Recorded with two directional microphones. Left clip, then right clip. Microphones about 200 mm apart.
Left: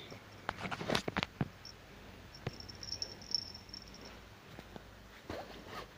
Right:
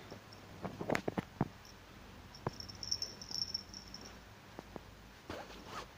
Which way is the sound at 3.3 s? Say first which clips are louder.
Left 3 dB; 15° right (ahead or behind).